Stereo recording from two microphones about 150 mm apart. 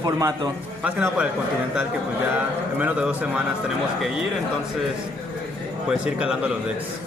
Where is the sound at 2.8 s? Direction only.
10° right (ahead or behind).